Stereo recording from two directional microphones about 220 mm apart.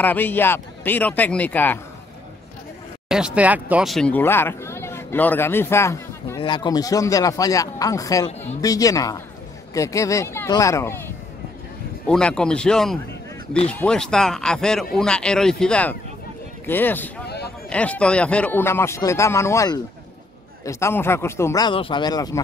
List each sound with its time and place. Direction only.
0.0 s speech: 10° left (ahead or behind)
3.1 s speech: 5° right (ahead or behind); by 11.0 s 15° left (ahead or behind)
12.1 s speech: 5° left (ahead or behind)